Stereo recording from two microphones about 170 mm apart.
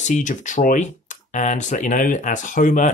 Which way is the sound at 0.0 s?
45° left (ahead or behind).